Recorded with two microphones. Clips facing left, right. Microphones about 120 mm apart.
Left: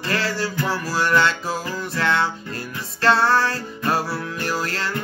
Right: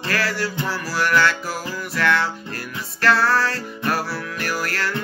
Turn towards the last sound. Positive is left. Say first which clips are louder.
# even
turn(degrees=25)  # may be behind; listen again after turning